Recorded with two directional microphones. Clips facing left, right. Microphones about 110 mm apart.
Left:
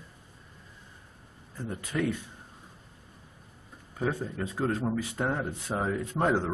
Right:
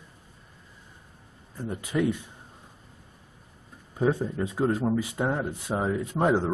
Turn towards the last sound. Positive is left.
turn(degrees=-10)  # may be behind; listen again after turning